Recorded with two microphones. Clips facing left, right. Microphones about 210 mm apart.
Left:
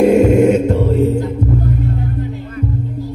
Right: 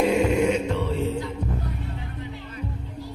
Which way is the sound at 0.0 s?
50° left (ahead or behind).